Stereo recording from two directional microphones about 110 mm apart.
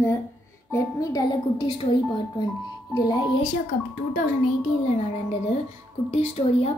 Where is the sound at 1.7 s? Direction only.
50° left (ahead or behind).